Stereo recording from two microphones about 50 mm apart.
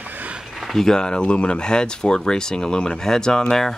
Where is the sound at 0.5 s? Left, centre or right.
Centre.